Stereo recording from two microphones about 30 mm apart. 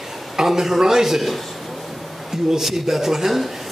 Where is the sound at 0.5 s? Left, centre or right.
Centre.